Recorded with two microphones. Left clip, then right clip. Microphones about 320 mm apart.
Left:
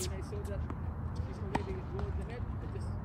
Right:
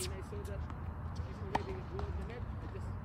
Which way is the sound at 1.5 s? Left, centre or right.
Right.